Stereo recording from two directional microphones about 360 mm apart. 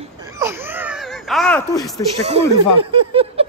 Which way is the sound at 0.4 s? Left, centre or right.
Centre.